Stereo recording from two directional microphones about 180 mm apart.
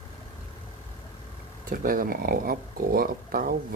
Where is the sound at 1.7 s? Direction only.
50° right (ahead or behind).